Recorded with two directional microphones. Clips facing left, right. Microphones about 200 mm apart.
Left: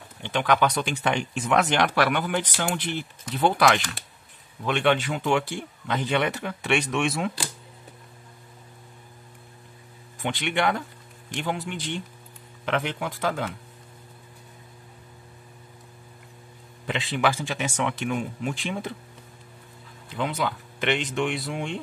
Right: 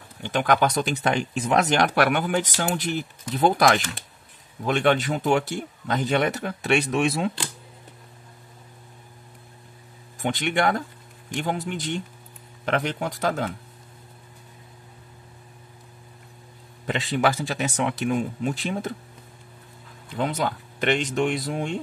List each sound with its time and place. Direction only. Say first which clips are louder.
0.2 s speech: right 1 dB; 45° right (ahead or behind)
10.1 s speech: right 3 dB; 45° right (ahead or behind)
16.8 s speech: right 2 dB; 40° right (ahead or behind)
20.2 s speech: right 2 dB; 45° right (ahead or behind)